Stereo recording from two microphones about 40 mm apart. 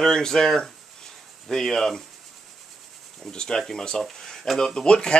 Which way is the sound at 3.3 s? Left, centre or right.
Left.